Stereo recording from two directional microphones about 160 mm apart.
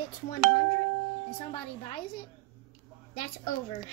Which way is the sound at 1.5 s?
30° left (ahead or behind).